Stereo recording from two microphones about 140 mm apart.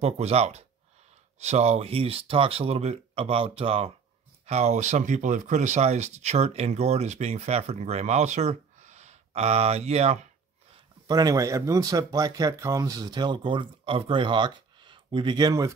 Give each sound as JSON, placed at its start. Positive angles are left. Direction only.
{"t": 0.0, "sound": "speech", "side_deg": -50}
{"t": 11.1, "sound": "speech", "side_deg": -25}